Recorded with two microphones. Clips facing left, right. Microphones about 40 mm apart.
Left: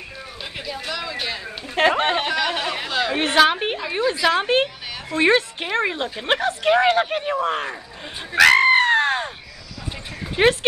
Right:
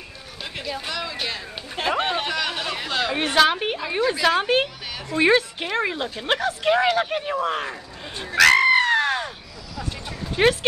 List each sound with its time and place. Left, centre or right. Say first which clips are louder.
0.4 s speech: right 1 dB; centre
1.9 s speech: left 2 dB; left
2.2 s a sound: left 3 dB; centre
2.9 s chatter: left 1 dB; centre
3.3 s a woman's voice: left 2 dB; centre
4.3 s a woman's voice: left 1 dB; centre
8.5 s goat: left 2 dB; left
10.4 s a woman's voice: left 2 dB; centre